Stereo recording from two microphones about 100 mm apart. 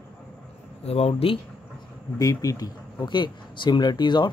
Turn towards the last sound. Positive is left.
turn(degrees=50)  # may be behind; listen again after turning